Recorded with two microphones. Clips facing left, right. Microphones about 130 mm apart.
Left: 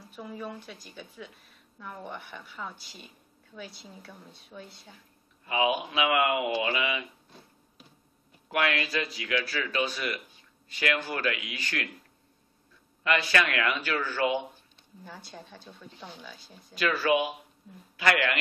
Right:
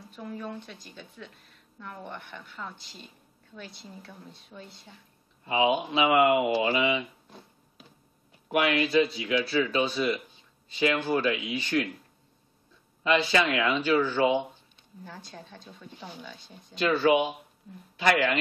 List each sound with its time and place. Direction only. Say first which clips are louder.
0.1 s a woman's voice: right 1 dB; 5° left (ahead or behind)
5.4 s speech: right 2 dB; 25° right (ahead or behind)
8.5 s speech: right 4 dB; 20° right (ahead or behind)
13.0 s speech: right 3 dB; 20° right (ahead or behind)
15.0 s a woman's voice: even; centre (ahead or behind)
16.7 s speech: right 3 dB; 25° right (ahead or behind)